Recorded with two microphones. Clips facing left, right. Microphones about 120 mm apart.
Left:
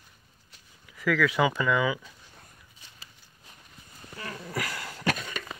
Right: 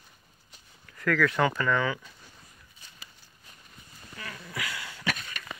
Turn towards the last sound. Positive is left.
turn(degrees=40)  # may be behind; listen again after turning